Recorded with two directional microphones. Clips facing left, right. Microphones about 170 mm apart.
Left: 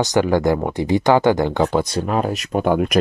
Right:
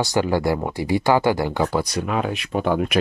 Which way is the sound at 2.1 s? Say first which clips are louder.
Left 3 dB; 40° left (ahead or behind).